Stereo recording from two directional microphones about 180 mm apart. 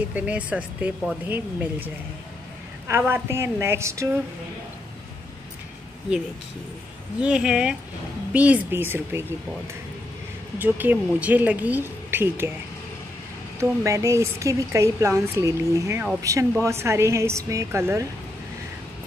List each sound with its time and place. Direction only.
0.1 s speech: 5° right (ahead or behind)
2.9 s speech: 15° right (ahead or behind)
7.2 s speech: 5° right (ahead or behind)
10.6 s speech: 10° right (ahead or behind)
13.6 s speech: 15° right (ahead or behind)